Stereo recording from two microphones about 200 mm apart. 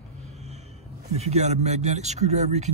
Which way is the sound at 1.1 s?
35° right (ahead or behind).